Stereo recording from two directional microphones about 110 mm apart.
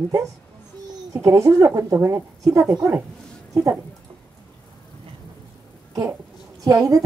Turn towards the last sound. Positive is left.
turn(degrees=-35)  # may be behind; listen again after turning